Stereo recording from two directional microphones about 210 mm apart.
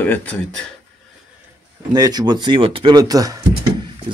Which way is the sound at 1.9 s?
20° right (ahead or behind).